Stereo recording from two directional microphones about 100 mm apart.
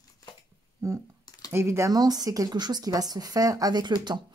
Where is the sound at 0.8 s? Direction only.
30° right (ahead or behind); by 4.1 s 45° right (ahead or behind).